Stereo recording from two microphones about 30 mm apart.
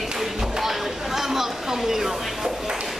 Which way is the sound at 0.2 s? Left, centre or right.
Centre.